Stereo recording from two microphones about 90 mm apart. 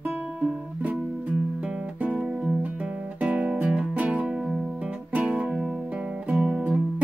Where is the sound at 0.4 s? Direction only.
10° right (ahead or behind).